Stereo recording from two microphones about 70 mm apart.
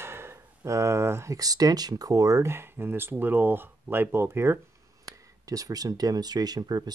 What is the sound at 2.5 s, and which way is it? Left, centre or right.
Speech, right.